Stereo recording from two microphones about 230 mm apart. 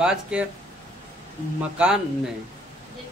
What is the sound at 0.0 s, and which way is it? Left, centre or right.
Speech, centre.